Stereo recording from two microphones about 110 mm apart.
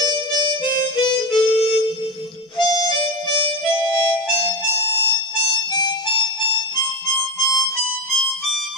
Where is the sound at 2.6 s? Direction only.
40° right (ahead or behind).